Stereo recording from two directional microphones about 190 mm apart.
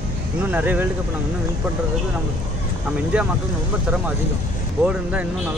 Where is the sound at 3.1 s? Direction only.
5° right (ahead or behind).